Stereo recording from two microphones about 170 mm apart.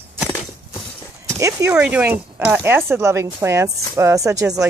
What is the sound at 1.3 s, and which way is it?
Speech, 15° right (ahead or behind).